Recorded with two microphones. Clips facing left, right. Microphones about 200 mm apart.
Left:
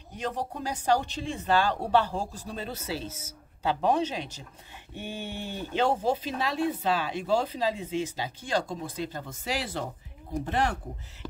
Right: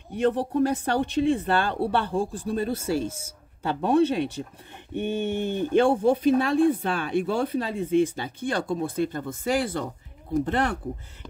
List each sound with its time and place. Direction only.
0.1 s speech: 65° right (ahead or behind)